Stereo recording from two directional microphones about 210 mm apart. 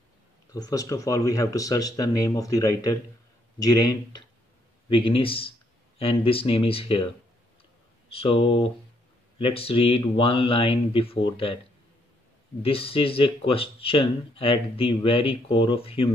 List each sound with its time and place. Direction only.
0.5 s speech: 15° left (ahead or behind)
8.1 s speech: 25° left (ahead or behind)
12.6 s speech: 25° left (ahead or behind)